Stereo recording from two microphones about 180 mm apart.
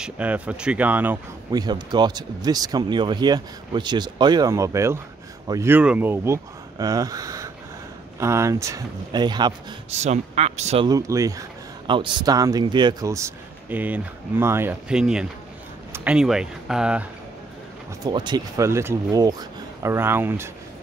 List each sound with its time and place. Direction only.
0.0 s speech: 5° right (ahead or behind)
1.5 s speech: 25° right (ahead or behind)
9.8 s speech: 40° right (ahead or behind)
10.9 s speech: 20° right (ahead or behind)
18.0 s speech: 25° right (ahead or behind)